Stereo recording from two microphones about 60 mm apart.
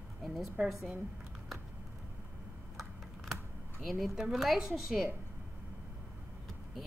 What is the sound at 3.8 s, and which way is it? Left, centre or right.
A woman's voice, centre.